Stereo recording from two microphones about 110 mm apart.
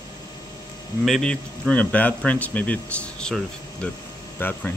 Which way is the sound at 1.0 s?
5° left (ahead or behind).